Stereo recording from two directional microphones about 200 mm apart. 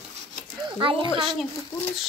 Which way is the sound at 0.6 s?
25° right (ahead or behind).